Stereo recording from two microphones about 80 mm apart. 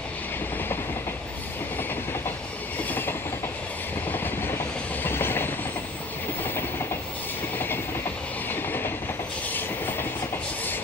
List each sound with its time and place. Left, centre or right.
2.9 s train: left
5.0 s train: left
7.5 s train: left